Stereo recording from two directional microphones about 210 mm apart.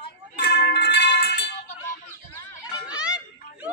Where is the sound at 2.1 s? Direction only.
15° left (ahead or behind).